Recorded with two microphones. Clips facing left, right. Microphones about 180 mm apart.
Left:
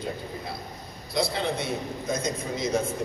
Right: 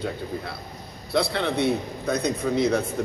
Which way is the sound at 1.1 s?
65° right (ahead or behind).